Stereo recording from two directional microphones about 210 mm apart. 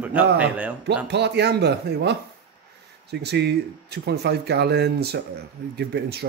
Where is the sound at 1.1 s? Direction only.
55° right (ahead or behind).